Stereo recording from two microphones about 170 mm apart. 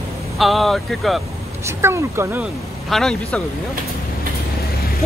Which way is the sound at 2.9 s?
5° left (ahead or behind).